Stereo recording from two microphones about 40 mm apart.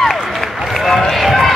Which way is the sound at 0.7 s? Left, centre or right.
Centre.